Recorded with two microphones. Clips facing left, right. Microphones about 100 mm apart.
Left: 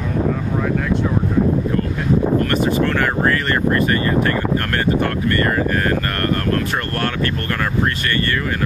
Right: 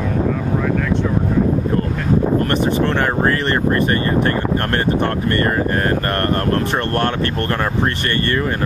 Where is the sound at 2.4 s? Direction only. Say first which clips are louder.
Even; 30° right (ahead or behind).